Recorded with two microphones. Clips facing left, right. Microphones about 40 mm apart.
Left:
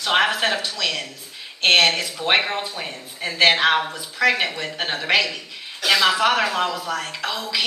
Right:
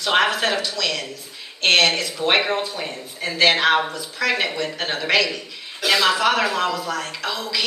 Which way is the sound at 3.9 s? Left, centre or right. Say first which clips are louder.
Left 3 dB; centre.